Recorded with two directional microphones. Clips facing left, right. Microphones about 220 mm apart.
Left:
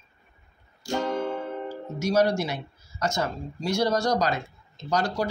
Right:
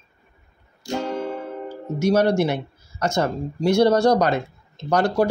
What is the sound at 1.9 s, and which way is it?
Speech, 60° right (ahead or behind).